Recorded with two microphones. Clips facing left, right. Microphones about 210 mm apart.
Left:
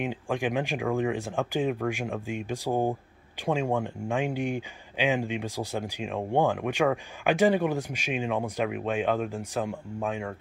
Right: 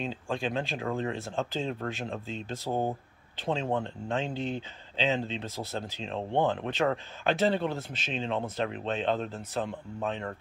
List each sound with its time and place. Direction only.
0.0 s speech: 15° left (ahead or behind)